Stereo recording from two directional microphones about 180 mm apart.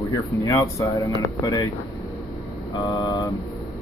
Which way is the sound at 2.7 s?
20° left (ahead or behind).